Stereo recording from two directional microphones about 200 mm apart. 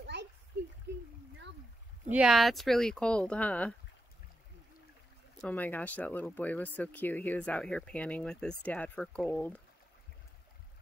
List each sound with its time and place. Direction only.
0.0 s a sound: 60° right (ahead or behind)
2.0 s speech: 5° right (ahead or behind)
5.4 s speech: 5° left (ahead or behind)